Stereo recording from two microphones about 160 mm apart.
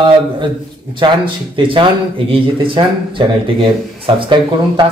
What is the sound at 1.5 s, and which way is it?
Speech, 30° right (ahead or behind).